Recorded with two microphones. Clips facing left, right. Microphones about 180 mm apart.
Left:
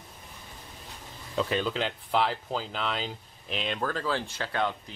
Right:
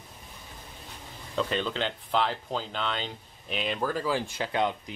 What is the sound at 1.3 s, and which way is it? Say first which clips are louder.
Speech: left 1 dB; 5° left (ahead or behind).